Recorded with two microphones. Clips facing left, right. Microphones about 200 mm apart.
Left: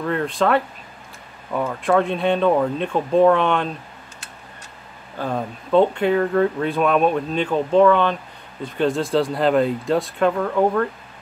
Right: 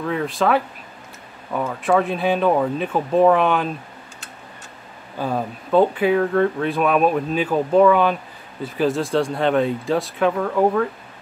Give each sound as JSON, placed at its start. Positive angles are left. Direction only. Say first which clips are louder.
{"t": 0.0, "sound": "speech", "louder": "even", "side_deg": 0}
{"t": 1.7, "sound": "speech", "louder": "even", "side_deg": 0}
{"t": 5.2, "sound": "speech", "louder": "right 1 dB", "side_deg": -5}